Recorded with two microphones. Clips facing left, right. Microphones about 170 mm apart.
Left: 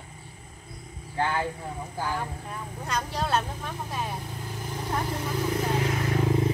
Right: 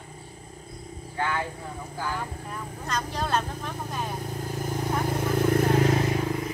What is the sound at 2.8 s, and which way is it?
Vehicle, 10° left (ahead or behind).